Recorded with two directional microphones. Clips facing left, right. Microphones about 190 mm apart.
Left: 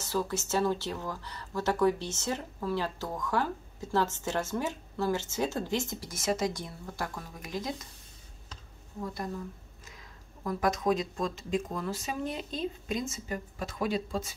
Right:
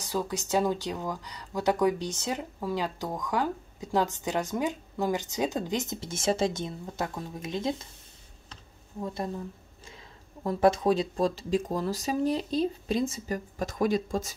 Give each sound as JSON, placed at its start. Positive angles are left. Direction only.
{"t": 0.0, "sound": "speech", "side_deg": -15}
{"t": 9.0, "sound": "speech", "side_deg": -25}
{"t": 10.4, "sound": "speech", "side_deg": -30}